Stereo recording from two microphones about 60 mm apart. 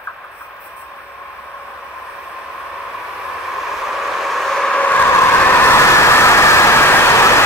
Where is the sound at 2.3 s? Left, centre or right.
Centre.